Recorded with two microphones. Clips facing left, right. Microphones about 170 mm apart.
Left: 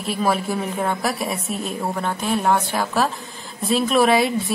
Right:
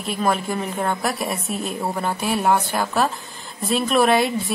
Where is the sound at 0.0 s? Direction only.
Centre (ahead or behind).